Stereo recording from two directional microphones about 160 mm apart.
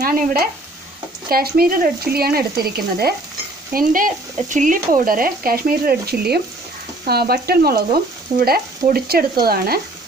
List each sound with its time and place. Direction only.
0.0 s frying: 70° right (ahead or behind)
3.7 s speech: 55° right (ahead or behind); by 6.4 s 80° right
7.1 s frying: 75° right (ahead or behind)